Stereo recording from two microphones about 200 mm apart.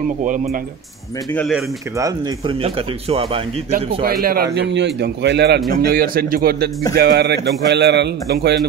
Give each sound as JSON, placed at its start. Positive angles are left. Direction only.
{"t": 0.2, "sound": "speech", "side_deg": -40}
{"t": 2.0, "sound": "speech", "side_deg": -20}
{"t": 2.6, "sound": "speech", "side_deg": -30}
{"t": 4.0, "sound": "speech", "side_deg": -50}
{"t": 4.6, "sound": "a man's voice", "side_deg": -60}